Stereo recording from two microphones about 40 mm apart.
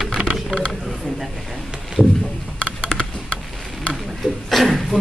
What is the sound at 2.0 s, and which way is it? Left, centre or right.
Speech, centre.